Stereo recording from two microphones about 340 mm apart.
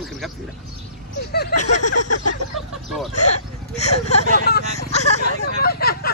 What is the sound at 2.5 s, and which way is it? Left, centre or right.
Speech, centre.